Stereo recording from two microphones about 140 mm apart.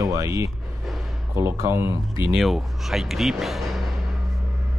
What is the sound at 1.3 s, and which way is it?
Speech, 20° right (ahead or behind).